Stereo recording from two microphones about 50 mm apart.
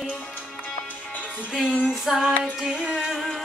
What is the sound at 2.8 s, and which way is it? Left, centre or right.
Music, centre.